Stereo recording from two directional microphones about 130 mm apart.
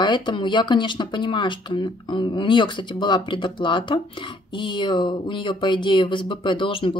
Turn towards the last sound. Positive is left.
turn(degrees=40)  # may be behind; listen again after turning